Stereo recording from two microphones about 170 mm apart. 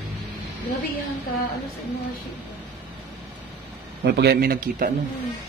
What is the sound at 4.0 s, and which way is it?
Speech, 70° right (ahead or behind).